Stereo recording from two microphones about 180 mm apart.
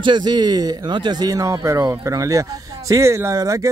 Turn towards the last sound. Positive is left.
turn(degrees=-20)  # may be behind; listen again after turning